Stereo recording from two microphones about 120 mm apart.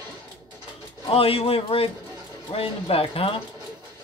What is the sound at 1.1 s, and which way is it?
Speech, 55° left (ahead or behind).